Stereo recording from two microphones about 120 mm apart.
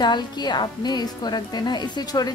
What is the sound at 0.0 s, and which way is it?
A woman's voice, 35° left (ahead or behind).